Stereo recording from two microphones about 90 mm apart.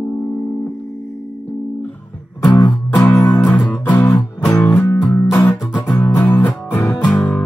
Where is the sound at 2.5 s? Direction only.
55° left (ahead or behind).